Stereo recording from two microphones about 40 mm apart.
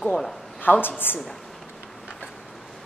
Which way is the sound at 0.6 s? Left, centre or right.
Left.